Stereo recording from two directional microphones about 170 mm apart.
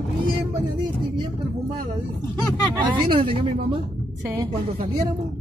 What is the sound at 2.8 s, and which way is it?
Speech, 30° right (ahead or behind).